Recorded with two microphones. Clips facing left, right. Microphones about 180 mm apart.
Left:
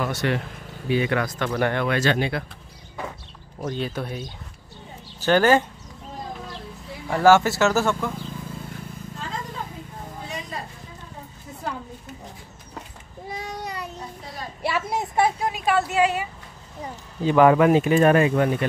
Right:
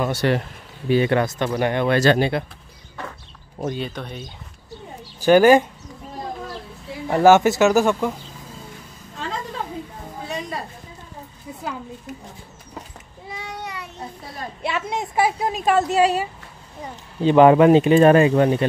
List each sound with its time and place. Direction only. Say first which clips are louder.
0.0 s speech: right 4 dB; 30° right (ahead or behind)
1.9 s speech: right 5 dB; 35° right (ahead or behind)
3.7 s speech: left 1 dB; 5° left (ahead or behind)
5.2 s speech: right 5 dB; 10° right (ahead or behind)
7.1 s speech: right 3 dB; 20° right (ahead or behind)
13.3 s child singing: left 1 dB; 40° left (ahead or behind)
14.6 s a sound: even; 5° left (ahead or behind)
15.5 s a sound: right 4 dB; 40° right (ahead or behind)
17.2 s speech: right 4 dB; 25° right (ahead or behind)